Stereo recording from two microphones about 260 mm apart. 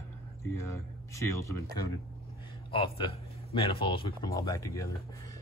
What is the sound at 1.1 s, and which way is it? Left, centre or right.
Speech, centre.